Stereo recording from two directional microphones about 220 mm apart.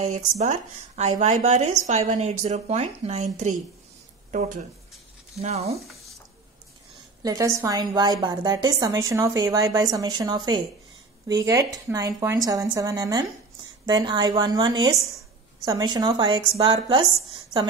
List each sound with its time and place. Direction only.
0.0 s speech: 30° right (ahead or behind)
7.2 s a woman's voice: 15° right (ahead or behind)